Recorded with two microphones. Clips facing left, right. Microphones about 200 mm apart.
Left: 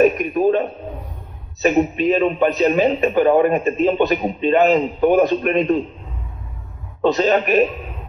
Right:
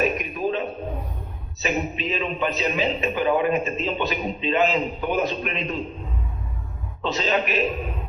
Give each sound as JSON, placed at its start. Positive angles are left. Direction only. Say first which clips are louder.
{"t": 0.0, "sound": "a sound", "louder": "left 9 dB", "side_deg": 50}
{"t": 1.6, "sound": "a man's voice", "louder": "left 10 dB", "side_deg": 50}
{"t": 7.0, "sound": "a man's voice", "louder": "left 8 dB", "side_deg": 50}